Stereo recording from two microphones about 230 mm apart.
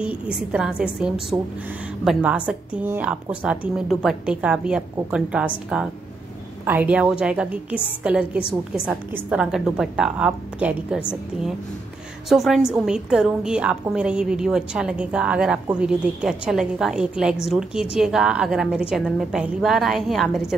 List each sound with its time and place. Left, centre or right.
0.0 s a woman's voice: centre